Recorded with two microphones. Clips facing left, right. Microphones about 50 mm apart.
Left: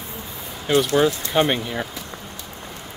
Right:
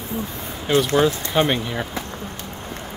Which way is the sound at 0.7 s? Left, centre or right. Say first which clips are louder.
Even; centre.